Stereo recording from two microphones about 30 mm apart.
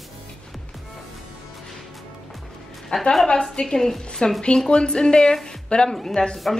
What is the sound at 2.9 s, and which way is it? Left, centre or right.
Speech, left.